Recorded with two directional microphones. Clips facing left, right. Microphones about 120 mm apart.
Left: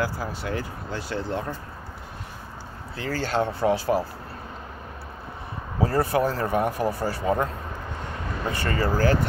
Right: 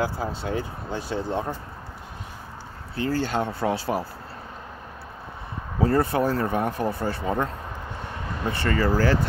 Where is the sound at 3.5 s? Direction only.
20° left (ahead or behind).